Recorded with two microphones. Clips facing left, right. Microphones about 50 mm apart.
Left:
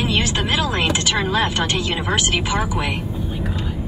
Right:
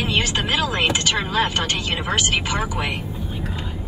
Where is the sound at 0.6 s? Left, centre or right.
Right.